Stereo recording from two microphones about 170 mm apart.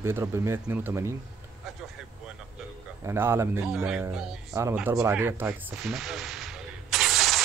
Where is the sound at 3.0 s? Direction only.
15° right (ahead or behind).